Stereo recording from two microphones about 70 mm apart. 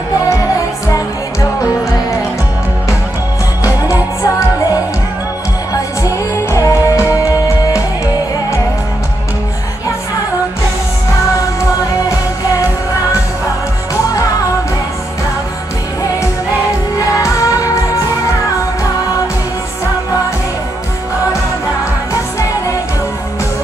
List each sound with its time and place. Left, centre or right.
6.5 s music: left
17.2 s music: left